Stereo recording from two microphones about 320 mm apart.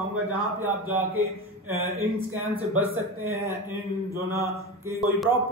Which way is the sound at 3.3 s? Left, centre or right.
Centre.